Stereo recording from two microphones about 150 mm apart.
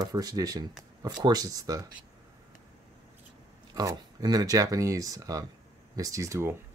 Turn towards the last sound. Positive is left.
turn(degrees=-20)  # may be behind; listen again after turning